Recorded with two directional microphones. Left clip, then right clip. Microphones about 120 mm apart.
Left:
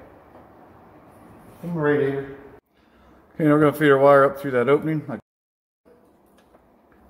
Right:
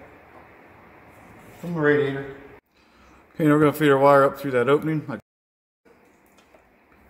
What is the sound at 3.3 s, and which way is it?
Speech, 15° right (ahead or behind).